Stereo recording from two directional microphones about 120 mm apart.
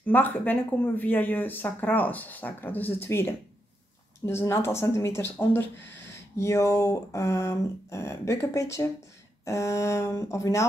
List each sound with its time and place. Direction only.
0.0 s speech: 15° left (ahead or behind)
4.3 s speech: 20° left (ahead or behind)